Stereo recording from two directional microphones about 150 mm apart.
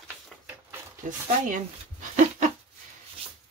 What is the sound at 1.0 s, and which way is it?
Speech, 60° right (ahead or behind).